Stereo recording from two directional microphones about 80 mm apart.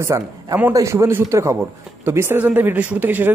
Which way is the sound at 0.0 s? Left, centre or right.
Right.